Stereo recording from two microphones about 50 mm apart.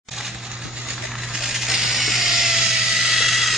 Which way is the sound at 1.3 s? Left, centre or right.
Centre.